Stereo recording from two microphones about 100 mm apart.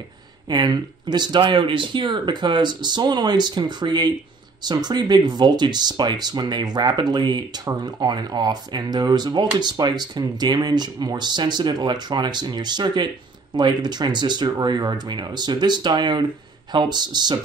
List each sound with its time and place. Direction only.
0.5 s speech: 45° right (ahead or behind)